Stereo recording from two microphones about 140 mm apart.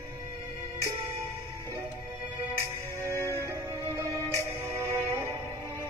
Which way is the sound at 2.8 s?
20° right (ahead or behind).